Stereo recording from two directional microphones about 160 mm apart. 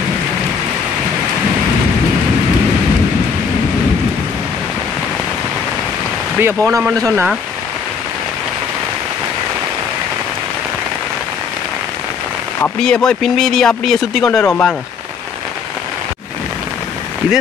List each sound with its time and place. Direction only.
6.4 s speech: 20° right (ahead or behind)
12.6 s speech: 5° left (ahead or behind)